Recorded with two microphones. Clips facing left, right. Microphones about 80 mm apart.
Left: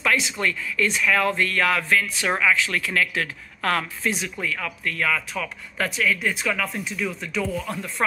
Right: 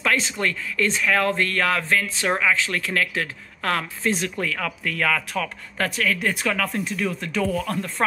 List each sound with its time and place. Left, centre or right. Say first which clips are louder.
0.0 s speech: even; right
0.6 s a sound: even; right
4.4 s speech: right 2 dB; right
5.3 s speech: right 3 dB; right
7.6 s speech: right 3 dB; centre